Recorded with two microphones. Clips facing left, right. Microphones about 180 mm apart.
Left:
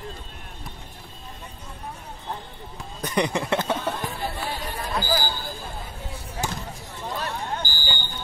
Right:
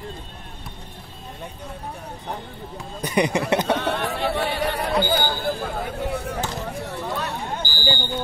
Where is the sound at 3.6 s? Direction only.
75° right (ahead or behind).